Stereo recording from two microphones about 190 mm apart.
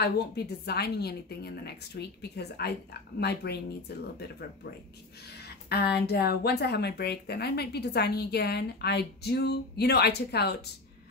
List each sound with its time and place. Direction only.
0.0 s a woman's voice: 55° left (ahead or behind)
5.7 s a woman's voice: 55° left (ahead or behind)